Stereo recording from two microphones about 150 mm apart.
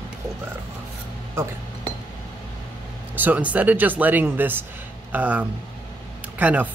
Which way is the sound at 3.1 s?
10° right (ahead or behind).